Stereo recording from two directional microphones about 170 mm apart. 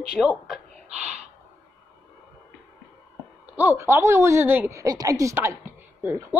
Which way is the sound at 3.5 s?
10° right (ahead or behind).